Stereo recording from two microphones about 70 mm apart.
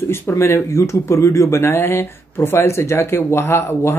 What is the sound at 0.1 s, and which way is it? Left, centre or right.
Speech, left.